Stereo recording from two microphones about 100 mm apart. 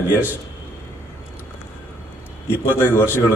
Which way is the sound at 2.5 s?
20° left (ahead or behind).